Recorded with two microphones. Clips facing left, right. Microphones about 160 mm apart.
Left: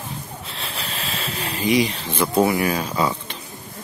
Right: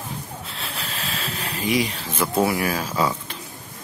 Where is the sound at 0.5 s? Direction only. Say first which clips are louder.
Left 2 dB; centre (ahead or behind).